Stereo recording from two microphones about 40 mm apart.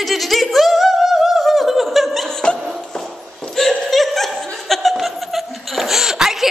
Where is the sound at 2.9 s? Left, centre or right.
Left.